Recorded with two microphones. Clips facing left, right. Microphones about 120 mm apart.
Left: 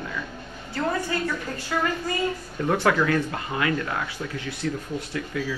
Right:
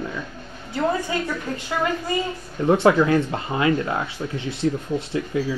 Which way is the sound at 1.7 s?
20° right (ahead or behind).